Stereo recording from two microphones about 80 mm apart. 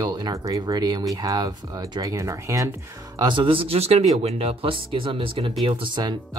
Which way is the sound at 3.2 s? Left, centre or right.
Right.